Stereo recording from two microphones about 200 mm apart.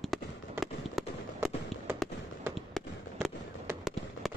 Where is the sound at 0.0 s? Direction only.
Centre (ahead or behind).